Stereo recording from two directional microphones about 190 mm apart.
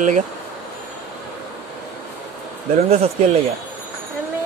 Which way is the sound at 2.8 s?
35° right (ahead or behind).